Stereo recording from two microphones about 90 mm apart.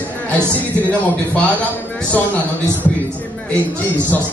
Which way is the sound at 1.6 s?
20° left (ahead or behind).